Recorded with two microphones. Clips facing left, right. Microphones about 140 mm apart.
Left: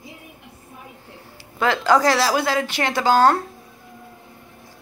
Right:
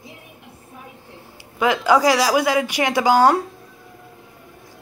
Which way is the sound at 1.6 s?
10° right (ahead or behind).